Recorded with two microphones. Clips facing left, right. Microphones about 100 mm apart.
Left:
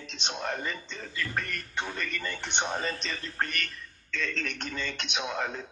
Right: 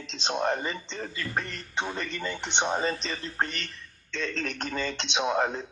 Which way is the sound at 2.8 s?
30° right (ahead or behind).